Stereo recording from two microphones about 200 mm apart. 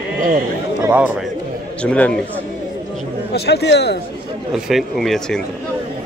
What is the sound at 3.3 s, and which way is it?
Speech, 55° left (ahead or behind).